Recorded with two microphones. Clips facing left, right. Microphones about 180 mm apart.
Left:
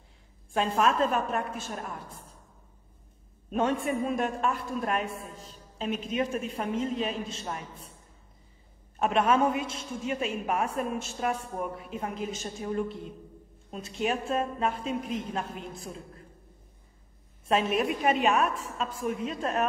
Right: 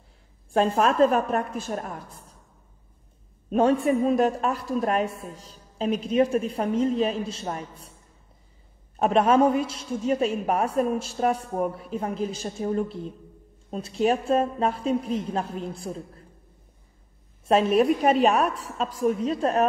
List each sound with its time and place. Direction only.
0.5 s a woman's voice: 40° right (ahead or behind)
3.4 s a woman's voice: 35° right (ahead or behind)
8.9 s a woman's voice: 35° right (ahead or behind)
17.5 s a woman's voice: 35° right (ahead or behind)